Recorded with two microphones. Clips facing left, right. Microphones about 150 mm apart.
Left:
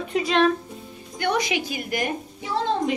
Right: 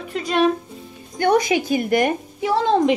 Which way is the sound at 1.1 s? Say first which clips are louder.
Right 7 dB; 45° right (ahead or behind).